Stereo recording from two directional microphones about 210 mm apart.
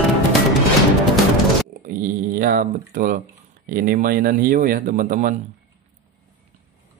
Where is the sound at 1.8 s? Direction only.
45° right (ahead or behind).